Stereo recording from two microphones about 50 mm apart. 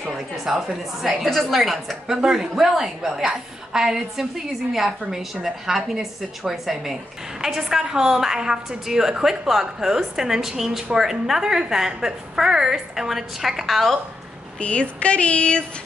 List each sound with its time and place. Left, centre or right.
0.0 s a woman's voice: centre
1.3 s a woman's voice: centre
14.6 s speech: left